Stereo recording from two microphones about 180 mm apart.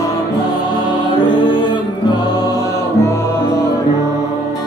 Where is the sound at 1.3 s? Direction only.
25° left (ahead or behind).